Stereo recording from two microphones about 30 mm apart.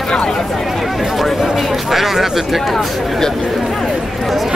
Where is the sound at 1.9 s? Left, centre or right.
Centre.